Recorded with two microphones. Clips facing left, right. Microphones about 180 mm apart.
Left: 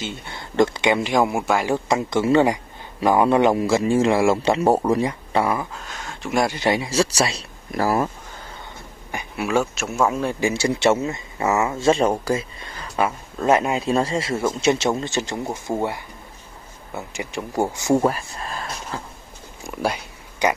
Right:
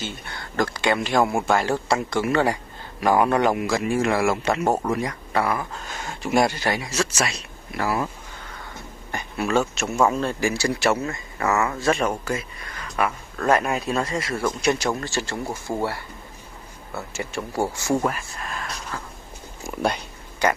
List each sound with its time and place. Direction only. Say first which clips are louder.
0.0 s speech: left 2 dB; 25° left (ahead or behind)
5.9 s speech: right 2 dB; 5° right (ahead or behind)
6.6 s speech: left 5 dB; 25° left (ahead or behind); by 8.1 s 40° left (ahead or behind)
9.1 s speech: left 1 dB; 10° left (ahead or behind)
10.2 s speech: left 2 dB; 20° left (ahead or behind)
18.0 s a sound: left 4 dB; 30° left (ahead or behind)
19.6 s speech: even; centre (ahead or behind)
20.4 s speech: left 1 dB; 15° left (ahead or behind)